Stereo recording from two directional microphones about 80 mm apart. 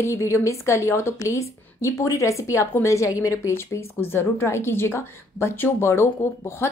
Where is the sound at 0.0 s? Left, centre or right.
Left.